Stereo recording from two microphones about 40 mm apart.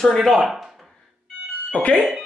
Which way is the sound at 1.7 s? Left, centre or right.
Left.